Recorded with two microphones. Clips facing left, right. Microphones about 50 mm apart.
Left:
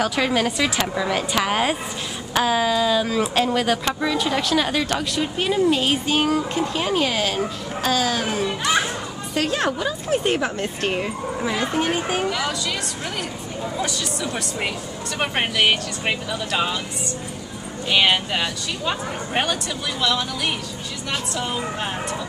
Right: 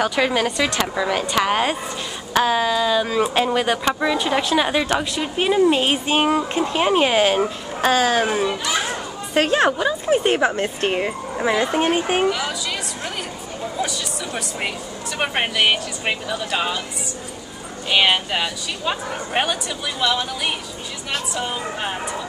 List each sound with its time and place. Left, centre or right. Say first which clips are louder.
0.0 s a woman's voice: right 1 dB; centre; by 12.3 s right
12.3 s speech: right 2 dB; centre
13.7 s speech: right 1 dB; centre